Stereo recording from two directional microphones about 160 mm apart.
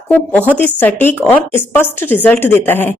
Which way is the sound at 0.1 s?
10° left (ahead or behind).